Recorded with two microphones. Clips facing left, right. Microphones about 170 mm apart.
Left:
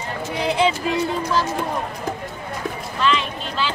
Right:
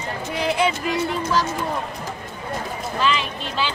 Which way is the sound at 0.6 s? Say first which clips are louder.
Left 4 dB; 25° left (ahead or behind).